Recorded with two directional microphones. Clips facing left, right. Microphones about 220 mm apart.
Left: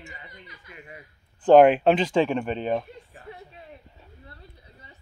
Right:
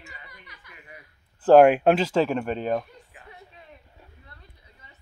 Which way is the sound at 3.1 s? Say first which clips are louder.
Left 5 dB; 35° left (ahead or behind).